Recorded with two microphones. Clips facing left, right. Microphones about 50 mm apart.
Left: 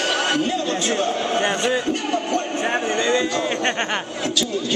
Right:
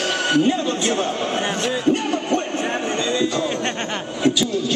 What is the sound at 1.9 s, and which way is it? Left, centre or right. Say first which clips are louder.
Music: right 3 dB; centre.